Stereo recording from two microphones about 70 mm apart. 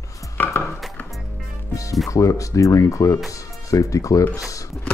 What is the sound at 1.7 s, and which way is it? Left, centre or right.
Music, left.